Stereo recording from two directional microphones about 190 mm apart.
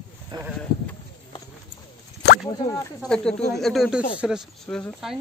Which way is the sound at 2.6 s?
15° left (ahead or behind).